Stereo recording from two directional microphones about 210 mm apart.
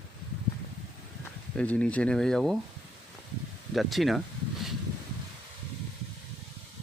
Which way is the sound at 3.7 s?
Centre (ahead or behind).